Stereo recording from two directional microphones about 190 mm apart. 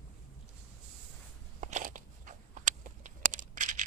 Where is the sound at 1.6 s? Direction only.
40° right (ahead or behind).